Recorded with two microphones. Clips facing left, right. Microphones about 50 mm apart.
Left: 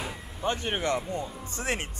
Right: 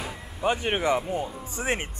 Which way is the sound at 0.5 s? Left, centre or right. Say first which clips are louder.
Right 4 dB; centre.